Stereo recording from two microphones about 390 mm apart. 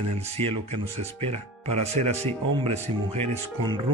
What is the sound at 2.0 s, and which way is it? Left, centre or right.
Speech, centre.